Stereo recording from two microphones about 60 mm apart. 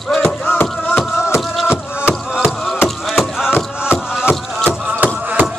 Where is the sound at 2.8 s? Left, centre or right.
Centre.